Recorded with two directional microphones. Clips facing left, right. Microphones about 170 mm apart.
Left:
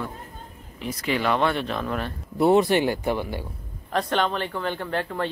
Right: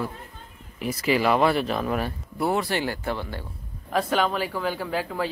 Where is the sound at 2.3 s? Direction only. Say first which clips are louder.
Left 7 dB; 20° left (ahead or behind).